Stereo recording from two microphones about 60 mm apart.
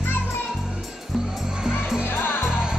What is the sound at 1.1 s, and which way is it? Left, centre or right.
Music, centre.